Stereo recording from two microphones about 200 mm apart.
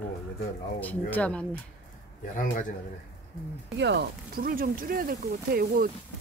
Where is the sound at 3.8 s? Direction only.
60° right (ahead or behind).